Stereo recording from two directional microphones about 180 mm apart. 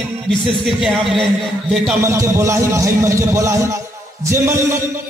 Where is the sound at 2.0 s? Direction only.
15° right (ahead or behind).